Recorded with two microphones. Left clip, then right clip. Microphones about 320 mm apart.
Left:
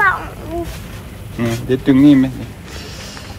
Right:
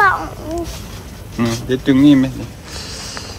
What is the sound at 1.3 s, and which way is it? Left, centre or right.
Speech, centre.